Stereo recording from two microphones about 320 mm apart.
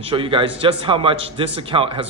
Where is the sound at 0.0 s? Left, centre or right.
Centre.